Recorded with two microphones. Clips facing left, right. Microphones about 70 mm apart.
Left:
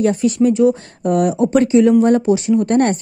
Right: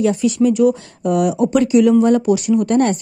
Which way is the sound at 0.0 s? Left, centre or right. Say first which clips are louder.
Left 1 dB; left.